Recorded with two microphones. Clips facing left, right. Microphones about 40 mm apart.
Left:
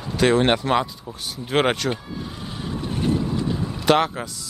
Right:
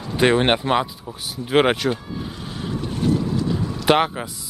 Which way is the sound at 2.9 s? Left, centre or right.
Left.